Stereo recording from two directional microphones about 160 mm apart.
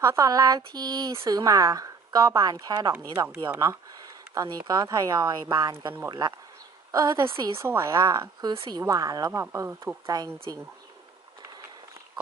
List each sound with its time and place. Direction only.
0.0 s a woman's voice: 20° right (ahead or behind)